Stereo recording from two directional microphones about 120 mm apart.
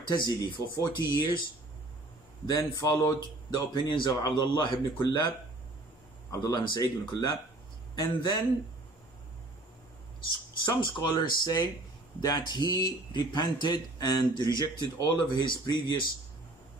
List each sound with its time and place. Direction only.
0.1 s speech: 30° left (ahead or behind)
2.4 s a man's voice: 30° left (ahead or behind)
6.3 s speech: 35° left (ahead or behind)
10.8 s speech: 40° left (ahead or behind)